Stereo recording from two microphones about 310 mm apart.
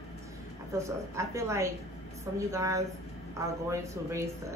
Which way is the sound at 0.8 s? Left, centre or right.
Centre.